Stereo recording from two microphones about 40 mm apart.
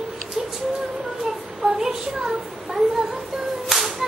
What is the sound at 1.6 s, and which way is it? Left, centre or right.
Child singing, centre.